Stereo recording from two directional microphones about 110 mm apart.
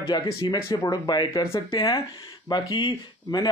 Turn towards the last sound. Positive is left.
turn(degrees=40)  # may be behind; listen again after turning